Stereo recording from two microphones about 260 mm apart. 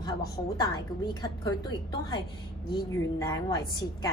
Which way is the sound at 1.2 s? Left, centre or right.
Centre.